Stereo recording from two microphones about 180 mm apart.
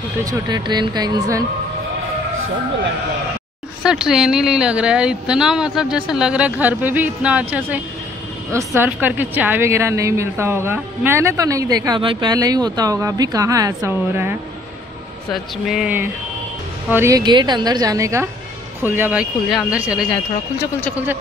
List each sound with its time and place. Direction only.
0.2 s a woman's voice: 20° right (ahead or behind)
3.8 s speech: 5° right (ahead or behind)
15.3 s a woman's voice: centre (ahead or behind)